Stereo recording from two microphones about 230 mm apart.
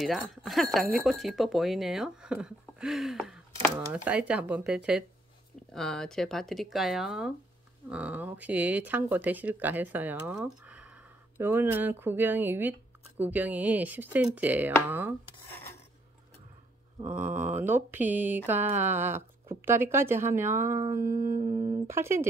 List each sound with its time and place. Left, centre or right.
0.0 s speech: centre
17.2 s speech: right
17.6 s speech: centre